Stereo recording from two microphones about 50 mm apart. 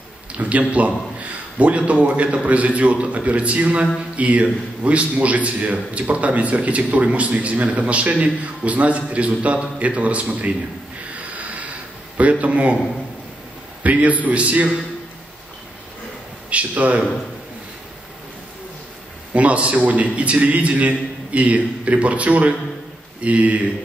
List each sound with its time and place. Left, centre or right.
0.3 s a man's voice: right
11.3 s a sound: right
12.2 s a man's voice: right
13.8 s a man's voice: right
16.4 s a man's voice: right
19.3 s a man's voice: right